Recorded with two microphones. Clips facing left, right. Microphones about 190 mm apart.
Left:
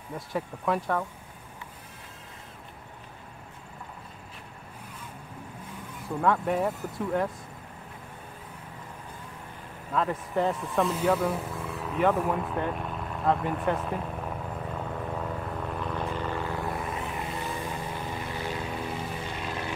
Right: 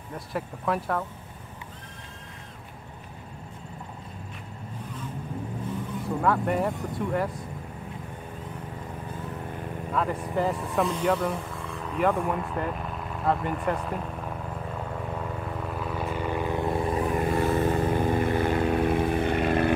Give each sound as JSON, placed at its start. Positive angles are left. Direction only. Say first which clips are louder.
{"t": 0.1, "sound": "speech", "louder": "even", "side_deg": 0}
{"t": 6.2, "sound": "speech", "louder": "even", "side_deg": 0}
{"t": 9.9, "sound": "speech", "louder": "even", "side_deg": 0}
{"t": 15.1, "sound": "vehicle", "louder": "even", "side_deg": -5}
{"t": 17.0, "sound": "vehicle", "louder": "right 9 dB", "side_deg": -50}